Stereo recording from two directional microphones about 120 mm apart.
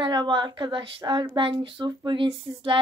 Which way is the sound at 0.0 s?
40° right (ahead or behind).